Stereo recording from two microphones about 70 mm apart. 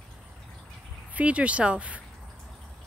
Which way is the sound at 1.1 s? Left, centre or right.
Centre.